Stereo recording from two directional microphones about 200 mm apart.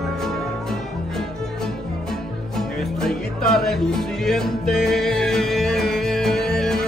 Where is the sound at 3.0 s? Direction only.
Centre (ahead or behind).